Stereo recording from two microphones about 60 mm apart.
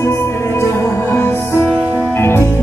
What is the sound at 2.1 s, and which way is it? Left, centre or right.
Music, left.